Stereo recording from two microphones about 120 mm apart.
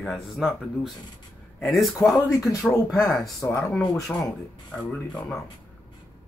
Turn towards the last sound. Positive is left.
turn(degrees=5)  # may be behind; listen again after turning